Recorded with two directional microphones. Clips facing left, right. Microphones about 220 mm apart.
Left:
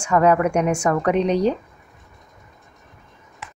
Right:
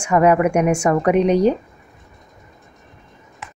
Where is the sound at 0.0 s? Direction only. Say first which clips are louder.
Right 2 dB; 10° right (ahead or behind).